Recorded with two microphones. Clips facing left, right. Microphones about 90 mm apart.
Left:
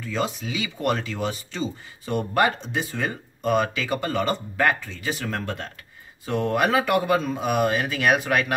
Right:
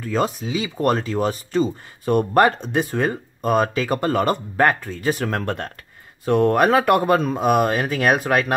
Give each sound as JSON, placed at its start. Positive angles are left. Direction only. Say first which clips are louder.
{"t": 0.0, "sound": "speech", "louder": "right 5 dB", "side_deg": -45}